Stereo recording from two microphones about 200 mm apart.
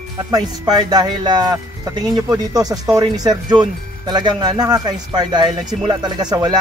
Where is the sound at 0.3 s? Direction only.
20° right (ahead or behind).